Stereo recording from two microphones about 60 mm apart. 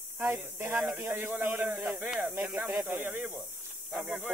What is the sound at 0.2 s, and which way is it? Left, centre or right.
A man's voice, right.